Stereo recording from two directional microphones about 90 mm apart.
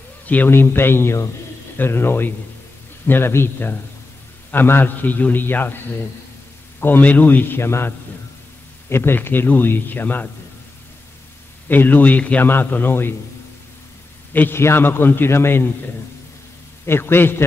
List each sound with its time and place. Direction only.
0.3 s a man's voice: 20° left (ahead or behind)
6.8 s a man's voice: 20° left (ahead or behind)
11.7 s a man's voice: 20° left (ahead or behind)
14.3 s a man's voice: 25° left (ahead or behind)
16.8 s a man's voice: 25° left (ahead or behind)